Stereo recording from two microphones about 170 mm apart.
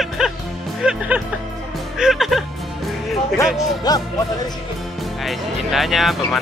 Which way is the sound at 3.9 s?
25° left (ahead or behind).